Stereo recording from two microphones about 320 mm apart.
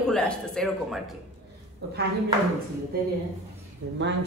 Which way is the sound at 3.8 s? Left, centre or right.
Right.